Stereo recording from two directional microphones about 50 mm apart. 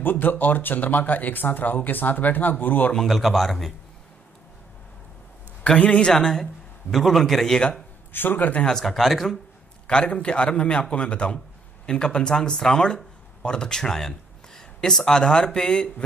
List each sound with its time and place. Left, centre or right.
0.0 s speech: left
3.1 s speech: centre
5.6 s a man's voice: left
6.1 s a man's voice: centre
8.1 s speech: left
8.6 s speech: centre
9.8 s a man's voice: centre